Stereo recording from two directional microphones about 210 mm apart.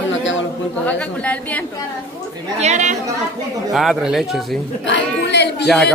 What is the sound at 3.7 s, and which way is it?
Speech, centre (ahead or behind).